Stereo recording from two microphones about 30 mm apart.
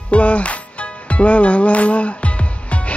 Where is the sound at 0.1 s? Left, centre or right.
Left.